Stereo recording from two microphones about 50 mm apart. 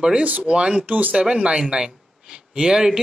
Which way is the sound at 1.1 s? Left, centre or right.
Centre.